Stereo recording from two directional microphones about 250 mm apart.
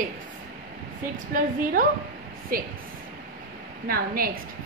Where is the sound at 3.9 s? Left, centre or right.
Right.